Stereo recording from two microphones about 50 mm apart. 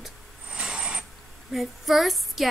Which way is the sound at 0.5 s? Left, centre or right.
Centre.